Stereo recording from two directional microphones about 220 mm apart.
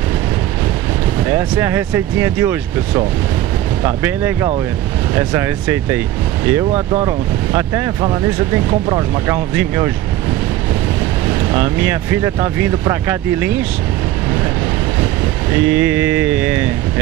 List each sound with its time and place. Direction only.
1.2 s speech: 10° right (ahead or behind)
6.7 s speech: 25° right (ahead or behind)
7.5 s speech: 15° right (ahead or behind)
11.5 s speech: 10° right (ahead or behind)
15.6 s speech: 10° right (ahead or behind)